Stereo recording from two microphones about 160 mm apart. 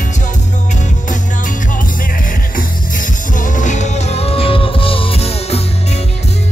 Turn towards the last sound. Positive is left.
turn(degrees=40)  # may be behind; listen again after turning